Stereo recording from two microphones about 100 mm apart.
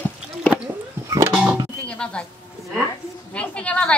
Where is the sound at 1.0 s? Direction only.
35° right (ahead or behind).